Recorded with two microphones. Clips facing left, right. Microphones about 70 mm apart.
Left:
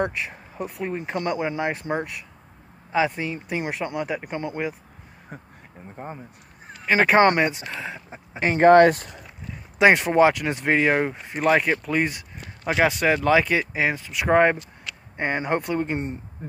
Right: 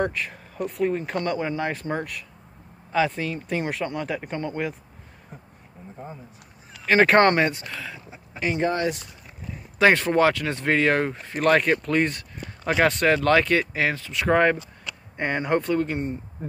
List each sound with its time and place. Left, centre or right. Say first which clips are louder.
0.0 s speech: even; centre
5.3 s speech: left 5 dB; left
6.9 s speech: even; centre
7.6 s speech: left 3 dB; left
8.4 s speech: left 3 dB; left
8.6 s speech: left 17 dB; left
9.8 s speech: left 2 dB; centre
15.9 s speech: even; left